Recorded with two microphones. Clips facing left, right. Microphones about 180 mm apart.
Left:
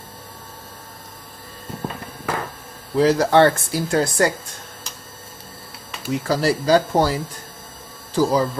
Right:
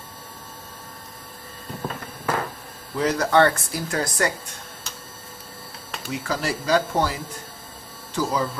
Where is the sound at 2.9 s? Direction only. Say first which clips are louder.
Left 5 dB; 30° left (ahead or behind).